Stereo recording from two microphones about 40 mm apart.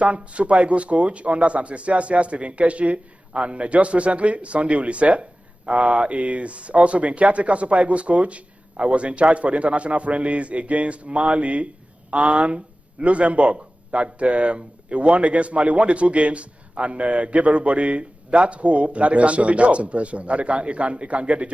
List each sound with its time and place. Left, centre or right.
0.0 s speech: right